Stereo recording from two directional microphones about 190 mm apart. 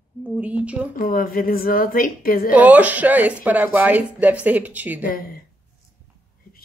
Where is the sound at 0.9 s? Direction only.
50° left (ahead or behind).